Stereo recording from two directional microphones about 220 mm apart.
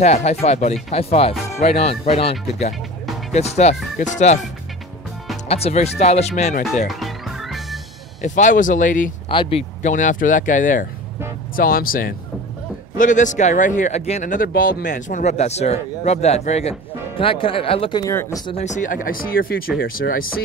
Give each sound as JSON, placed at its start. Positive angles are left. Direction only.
{"t": 0.0, "sound": "speech", "side_deg": 30}
{"t": 3.3, "sound": "speech", "side_deg": 30}
{"t": 5.5, "sound": "speech", "side_deg": 30}
{"t": 6.9, "sound": "music", "side_deg": 0}
{"t": 8.2, "sound": "speech", "side_deg": 35}
{"t": 9.3, "sound": "speech", "side_deg": 25}
{"t": 18.6, "sound": "speech", "side_deg": 35}